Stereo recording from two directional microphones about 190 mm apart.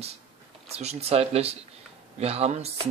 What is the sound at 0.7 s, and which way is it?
Speech, 35° right (ahead or behind).